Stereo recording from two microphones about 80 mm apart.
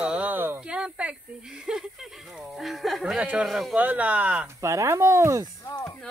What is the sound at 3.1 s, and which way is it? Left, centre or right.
Speech, centre.